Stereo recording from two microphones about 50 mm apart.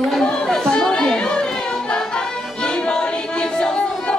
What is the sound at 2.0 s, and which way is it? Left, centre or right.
Music, centre.